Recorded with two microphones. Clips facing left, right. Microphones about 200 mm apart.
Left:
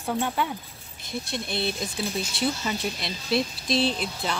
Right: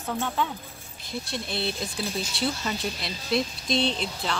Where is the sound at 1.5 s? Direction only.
15° left (ahead or behind).